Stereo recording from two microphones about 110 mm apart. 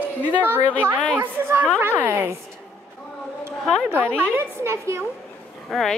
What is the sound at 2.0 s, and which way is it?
Speech, 25° right (ahead or behind).